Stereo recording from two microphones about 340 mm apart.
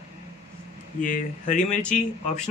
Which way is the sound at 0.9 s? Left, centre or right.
Left.